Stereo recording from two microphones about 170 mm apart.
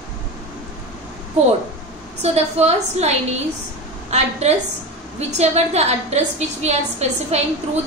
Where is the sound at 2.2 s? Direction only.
40° right (ahead or behind).